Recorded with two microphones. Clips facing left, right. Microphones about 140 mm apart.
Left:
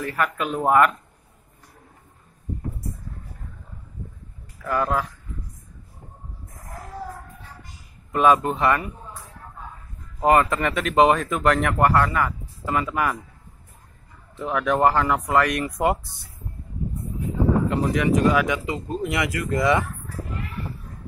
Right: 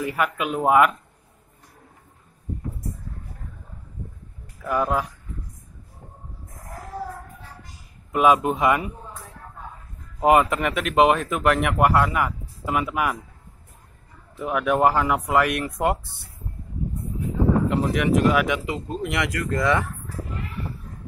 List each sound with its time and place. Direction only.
0.0 s speech: 10° right (ahead or behind)
4.6 s speech: 15° right (ahead or behind)
8.1 s speech: 10° right (ahead or behind)
10.2 s speech: 10° right (ahead or behind)
14.3 s speech: 10° right (ahead or behind)
17.6 s speech: 5° right (ahead or behind)